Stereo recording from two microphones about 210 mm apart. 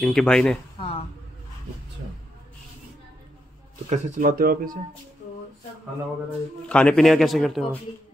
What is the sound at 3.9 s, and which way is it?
Speech, 35° right (ahead or behind).